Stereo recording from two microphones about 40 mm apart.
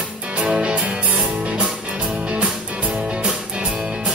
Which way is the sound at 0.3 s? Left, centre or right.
Right.